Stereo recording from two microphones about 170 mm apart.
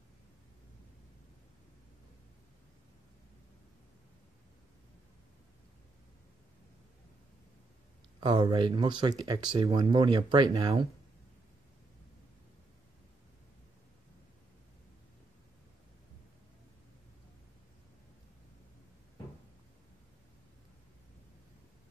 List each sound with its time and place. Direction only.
8.2 s speech: 25° right (ahead or behind)